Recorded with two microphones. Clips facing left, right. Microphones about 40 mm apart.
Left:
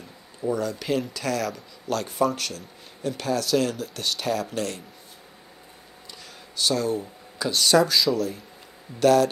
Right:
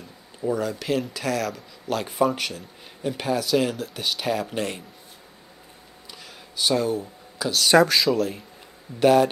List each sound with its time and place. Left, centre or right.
0.4 s speech: centre
6.5 s speech: centre
7.0 s a sound: centre
8.0 s speech: centre